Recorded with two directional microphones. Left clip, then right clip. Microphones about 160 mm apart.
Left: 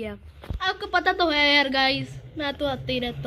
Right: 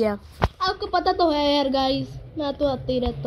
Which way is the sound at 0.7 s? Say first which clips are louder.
Right 1 dB; 10° right (ahead or behind).